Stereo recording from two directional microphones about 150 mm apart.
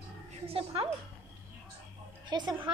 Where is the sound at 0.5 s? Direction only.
40° right (ahead or behind).